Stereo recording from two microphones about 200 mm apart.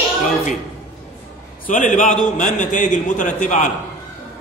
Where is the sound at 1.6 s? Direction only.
40° left (ahead or behind).